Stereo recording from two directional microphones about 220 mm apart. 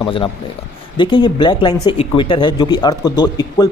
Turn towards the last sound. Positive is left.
turn(degrees=20)  # may be behind; listen again after turning